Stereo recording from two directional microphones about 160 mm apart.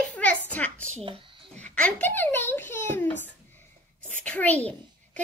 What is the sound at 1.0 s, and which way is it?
Speech, 30° right (ahead or behind).